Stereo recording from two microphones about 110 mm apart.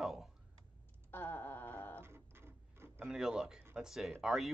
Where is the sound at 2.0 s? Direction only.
20° right (ahead or behind).